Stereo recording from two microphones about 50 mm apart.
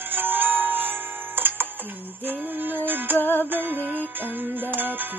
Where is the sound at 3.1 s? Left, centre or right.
Left.